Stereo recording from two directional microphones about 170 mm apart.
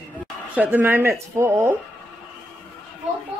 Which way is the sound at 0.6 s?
10° right (ahead or behind).